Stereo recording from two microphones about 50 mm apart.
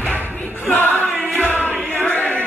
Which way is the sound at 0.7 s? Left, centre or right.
Left.